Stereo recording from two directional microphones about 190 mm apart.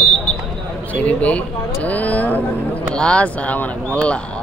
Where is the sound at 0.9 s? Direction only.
5° left (ahead or behind).